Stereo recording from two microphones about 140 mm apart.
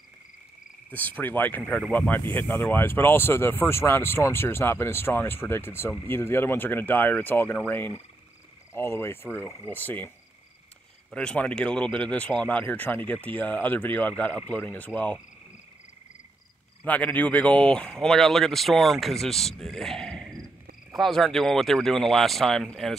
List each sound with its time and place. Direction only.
0.8 s speech: 10° left (ahead or behind)
11.1 s speech: 10° left (ahead or behind)
16.8 s speech: 10° left (ahead or behind)